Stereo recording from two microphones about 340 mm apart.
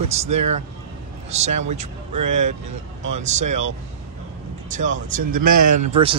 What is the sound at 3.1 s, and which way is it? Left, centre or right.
Speech, centre.